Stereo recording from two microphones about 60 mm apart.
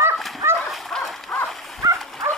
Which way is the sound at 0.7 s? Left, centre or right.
Centre.